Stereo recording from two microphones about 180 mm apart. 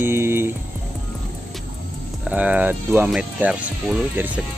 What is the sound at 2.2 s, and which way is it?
Speech, 10° right (ahead or behind).